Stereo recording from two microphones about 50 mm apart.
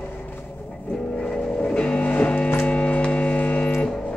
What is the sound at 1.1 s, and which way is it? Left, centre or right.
Music, centre.